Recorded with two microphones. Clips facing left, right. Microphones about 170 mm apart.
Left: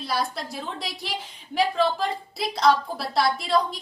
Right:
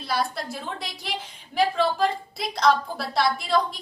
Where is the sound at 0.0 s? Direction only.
Centre (ahead or behind).